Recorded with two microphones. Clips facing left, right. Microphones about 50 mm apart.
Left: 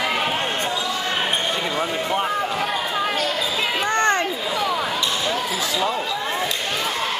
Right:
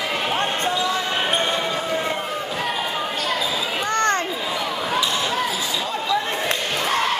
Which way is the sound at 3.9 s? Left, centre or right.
Centre.